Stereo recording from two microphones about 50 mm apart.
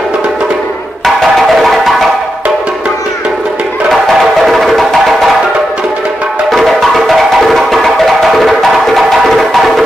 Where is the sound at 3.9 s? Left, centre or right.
Centre.